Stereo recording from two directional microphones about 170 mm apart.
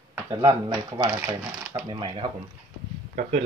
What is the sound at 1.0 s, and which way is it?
Speech, 10° right (ahead or behind).